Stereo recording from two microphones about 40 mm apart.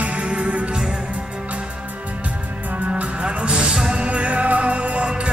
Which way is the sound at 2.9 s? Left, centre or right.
Right.